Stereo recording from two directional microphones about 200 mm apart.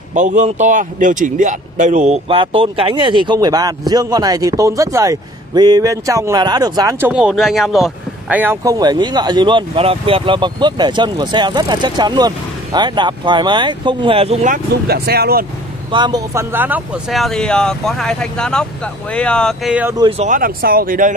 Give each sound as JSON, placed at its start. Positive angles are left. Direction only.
{"t": 0.1, "sound": "speech", "side_deg": -40}
{"t": 14.9, "sound": "speech", "side_deg": -50}
{"t": 15.9, "sound": "speech", "side_deg": -20}
{"t": 20.0, "sound": "speech", "side_deg": -30}